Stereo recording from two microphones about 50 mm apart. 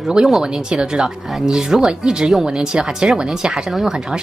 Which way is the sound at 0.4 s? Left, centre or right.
Centre.